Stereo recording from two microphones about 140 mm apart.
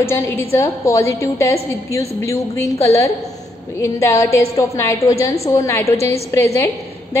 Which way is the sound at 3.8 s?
20° left (ahead or behind).